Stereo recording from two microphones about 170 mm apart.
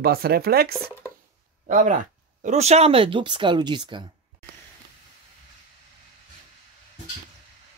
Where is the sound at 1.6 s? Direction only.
50° right (ahead or behind); by 4.0 s 25° right (ahead or behind).